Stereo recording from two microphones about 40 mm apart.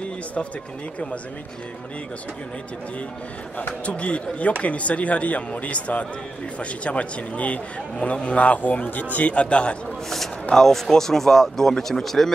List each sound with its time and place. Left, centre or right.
0.0 s run: left
3.8 s a man's voice: left
10.0 s a sound: centre
10.5 s speech: centre